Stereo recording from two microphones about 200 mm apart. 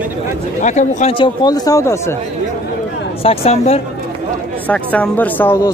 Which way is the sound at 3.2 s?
30° left (ahead or behind).